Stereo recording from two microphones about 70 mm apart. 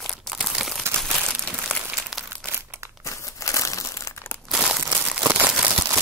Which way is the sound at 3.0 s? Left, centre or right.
Left.